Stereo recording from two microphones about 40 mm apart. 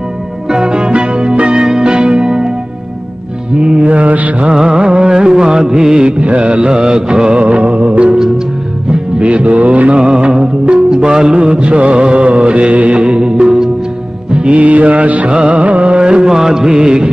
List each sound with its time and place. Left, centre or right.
0.5 s music: centre
3.8 s mantra: right
4.5 s music: right
9.9 s music: right
14.5 s music: right
16.0 s music: right